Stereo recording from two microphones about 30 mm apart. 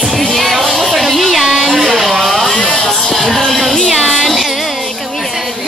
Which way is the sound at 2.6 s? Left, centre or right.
Left.